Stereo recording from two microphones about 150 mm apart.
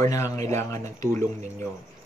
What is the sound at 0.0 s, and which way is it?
Speech, 20° left (ahead or behind).